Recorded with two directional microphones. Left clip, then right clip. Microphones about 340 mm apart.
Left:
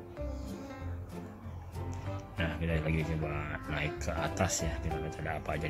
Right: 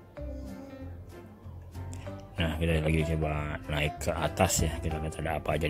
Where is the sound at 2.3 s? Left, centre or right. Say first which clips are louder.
Right 5 dB; centre.